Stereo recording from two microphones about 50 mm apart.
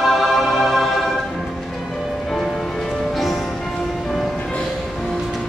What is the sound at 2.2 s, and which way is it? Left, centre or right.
Music, centre.